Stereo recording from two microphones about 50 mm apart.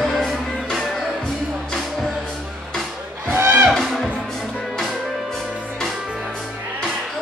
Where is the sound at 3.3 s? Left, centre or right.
Right.